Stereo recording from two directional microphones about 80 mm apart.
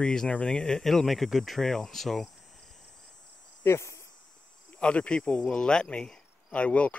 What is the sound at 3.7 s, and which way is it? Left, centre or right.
Speech, left.